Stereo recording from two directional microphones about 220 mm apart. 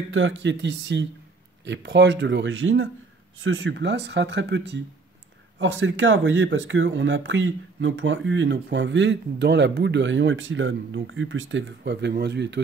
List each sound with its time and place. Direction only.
0.1 s speech: 60° right (ahead or behind)